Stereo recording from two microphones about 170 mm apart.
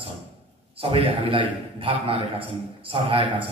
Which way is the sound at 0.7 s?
30° right (ahead or behind).